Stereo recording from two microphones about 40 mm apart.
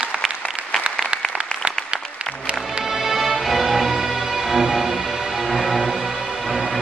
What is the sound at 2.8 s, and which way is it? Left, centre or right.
Music, centre.